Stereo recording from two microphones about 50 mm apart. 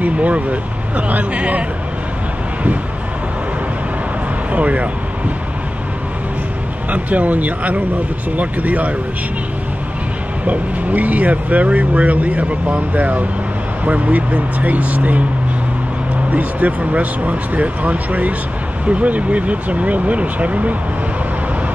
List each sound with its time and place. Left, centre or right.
0.0 s speech: right
4.5 s speech: right
6.9 s speech: right
10.4 s speech: right
16.3 s speech: right